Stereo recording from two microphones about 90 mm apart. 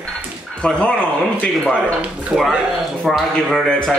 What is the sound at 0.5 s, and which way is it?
Speech, 10° left (ahead or behind).